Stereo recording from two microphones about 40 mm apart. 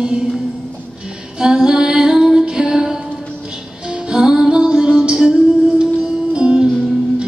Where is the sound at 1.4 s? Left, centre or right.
Centre.